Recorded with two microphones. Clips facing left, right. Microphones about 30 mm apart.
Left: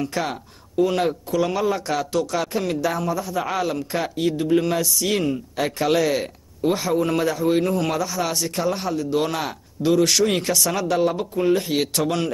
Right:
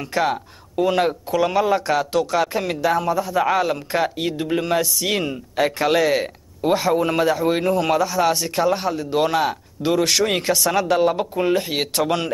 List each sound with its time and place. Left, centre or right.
0.0 s speech: centre